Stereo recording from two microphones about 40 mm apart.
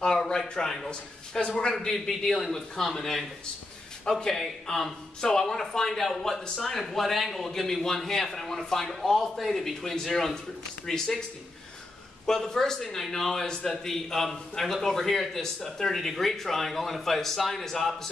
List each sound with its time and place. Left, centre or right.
0.0 s a sound: centre
0.8 s a man's voice: left
1.9 s a man's voice: centre
4.3 s a man's voice: centre
12.4 s a man's voice: centre